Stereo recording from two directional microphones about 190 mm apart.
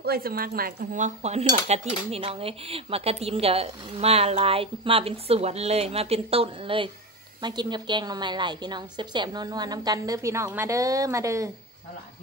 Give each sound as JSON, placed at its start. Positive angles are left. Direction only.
{"t": 0.0, "sound": "a woman's voice", "side_deg": -55}